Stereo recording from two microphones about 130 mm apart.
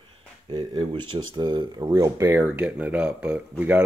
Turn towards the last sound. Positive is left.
turn(degrees=-10)  # may be behind; listen again after turning